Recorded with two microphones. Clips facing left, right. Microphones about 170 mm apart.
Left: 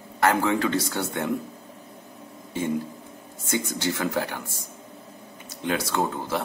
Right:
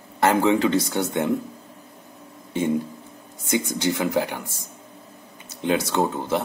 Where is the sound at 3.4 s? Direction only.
15° right (ahead or behind).